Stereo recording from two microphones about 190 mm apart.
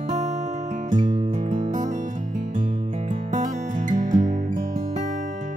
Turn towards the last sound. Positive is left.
turn(degrees=-40)  # may be behind; listen again after turning